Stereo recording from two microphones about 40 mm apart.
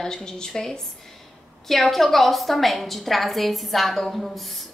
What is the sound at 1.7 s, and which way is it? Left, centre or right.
A woman's voice, centre.